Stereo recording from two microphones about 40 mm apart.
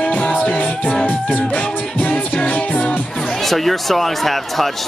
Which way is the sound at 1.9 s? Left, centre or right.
Left.